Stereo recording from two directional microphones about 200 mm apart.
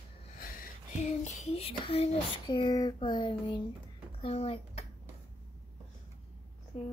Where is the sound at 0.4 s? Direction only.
45° left (ahead or behind); by 3.6 s 25° left (ahead or behind).